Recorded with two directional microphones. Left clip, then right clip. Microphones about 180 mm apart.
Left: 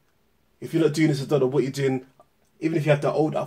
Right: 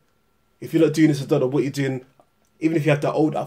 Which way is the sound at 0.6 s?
25° right (ahead or behind).